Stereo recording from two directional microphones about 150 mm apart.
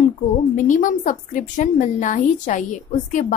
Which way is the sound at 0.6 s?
60° left (ahead or behind).